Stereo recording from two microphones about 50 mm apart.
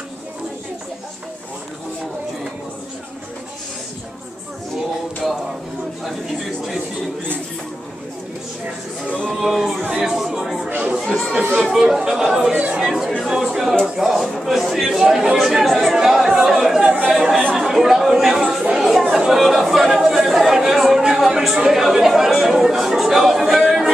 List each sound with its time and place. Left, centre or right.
9.3 s a sound: centre
11.1 s crowd: centre
11.5 s speech: centre
15.0 s speech: centre
15.3 s chatter: centre
16.8 s chatter: right
17.6 s chatter: centre
18.8 s speech: centre
21.0 s a sound: centre
21.5 s speech: centre